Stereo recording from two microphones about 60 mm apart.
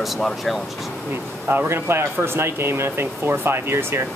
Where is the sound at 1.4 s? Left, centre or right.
Right.